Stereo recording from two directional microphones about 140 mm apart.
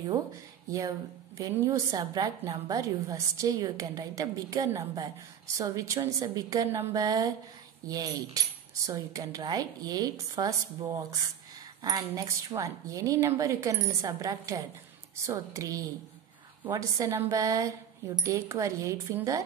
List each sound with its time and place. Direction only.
0.7 s a woman's voice: 25° right (ahead or behind)